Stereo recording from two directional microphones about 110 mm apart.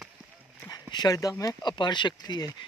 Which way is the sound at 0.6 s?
40° left (ahead or behind).